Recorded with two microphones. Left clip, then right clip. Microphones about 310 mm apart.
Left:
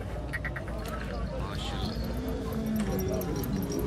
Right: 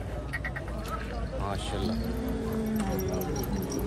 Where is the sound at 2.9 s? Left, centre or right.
Left.